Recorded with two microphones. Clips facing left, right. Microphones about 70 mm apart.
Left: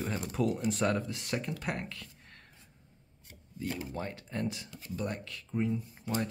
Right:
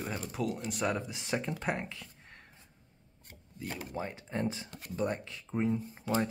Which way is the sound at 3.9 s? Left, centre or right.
Centre.